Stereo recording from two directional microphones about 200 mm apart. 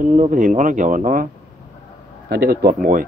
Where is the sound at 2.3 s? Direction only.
50° right (ahead or behind).